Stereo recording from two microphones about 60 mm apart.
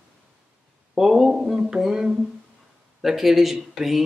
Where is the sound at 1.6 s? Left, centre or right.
Centre.